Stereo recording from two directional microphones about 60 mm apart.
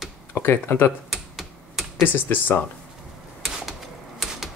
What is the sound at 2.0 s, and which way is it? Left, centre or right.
Speech, left.